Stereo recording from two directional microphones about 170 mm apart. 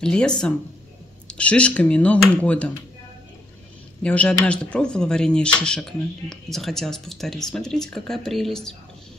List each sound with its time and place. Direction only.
0.0 s speech: 5° left (ahead or behind)
4.0 s speech: 5° left (ahead or behind)